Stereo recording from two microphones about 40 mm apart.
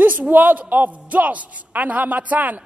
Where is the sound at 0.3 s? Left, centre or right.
Right.